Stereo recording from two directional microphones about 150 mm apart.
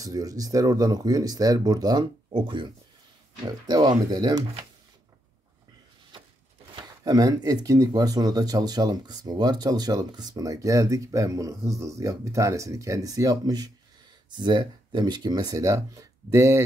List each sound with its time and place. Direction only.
0.0 s speech: 25° right (ahead or behind)
6.7 s speech: 25° right (ahead or behind)